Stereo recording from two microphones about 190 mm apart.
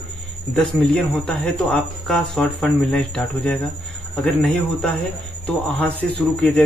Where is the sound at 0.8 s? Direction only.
5° left (ahead or behind).